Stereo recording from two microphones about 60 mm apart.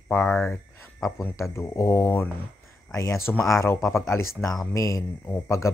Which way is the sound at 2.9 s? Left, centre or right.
Left.